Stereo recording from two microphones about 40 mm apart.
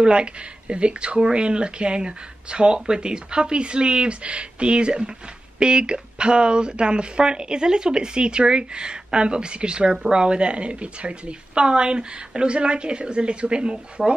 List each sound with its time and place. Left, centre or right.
0.0 s speech: right